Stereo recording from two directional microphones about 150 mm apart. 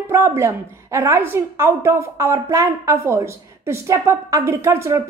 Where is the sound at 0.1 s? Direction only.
20° right (ahead or behind).